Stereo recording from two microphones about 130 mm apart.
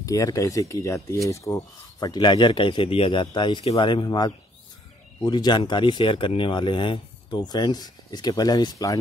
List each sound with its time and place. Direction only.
0.0 s speech: 25° left (ahead or behind)